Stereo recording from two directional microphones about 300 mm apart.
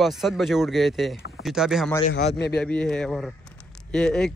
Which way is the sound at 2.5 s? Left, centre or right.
Centre.